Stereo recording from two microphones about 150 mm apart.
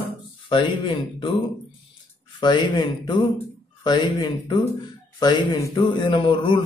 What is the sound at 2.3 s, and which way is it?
A man's voice, 30° left (ahead or behind).